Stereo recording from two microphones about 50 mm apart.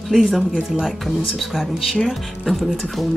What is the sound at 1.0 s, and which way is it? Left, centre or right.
Speech, centre.